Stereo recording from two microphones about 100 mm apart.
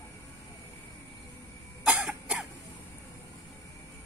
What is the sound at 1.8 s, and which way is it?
Cough, 10° right (ahead or behind).